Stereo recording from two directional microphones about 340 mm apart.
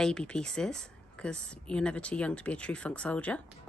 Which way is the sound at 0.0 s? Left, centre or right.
Centre.